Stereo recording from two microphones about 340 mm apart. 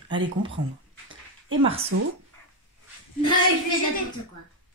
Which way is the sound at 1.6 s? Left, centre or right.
Centre.